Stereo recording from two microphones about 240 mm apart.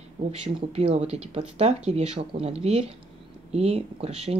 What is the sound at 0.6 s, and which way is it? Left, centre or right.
Speech, right.